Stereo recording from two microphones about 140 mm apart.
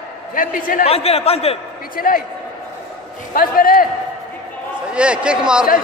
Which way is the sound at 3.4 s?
90° left.